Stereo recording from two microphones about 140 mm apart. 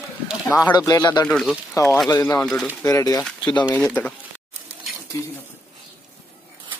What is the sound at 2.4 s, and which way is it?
Speech, 5° left (ahead or behind).